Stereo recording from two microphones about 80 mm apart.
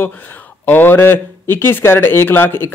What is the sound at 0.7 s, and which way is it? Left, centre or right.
Speech, left.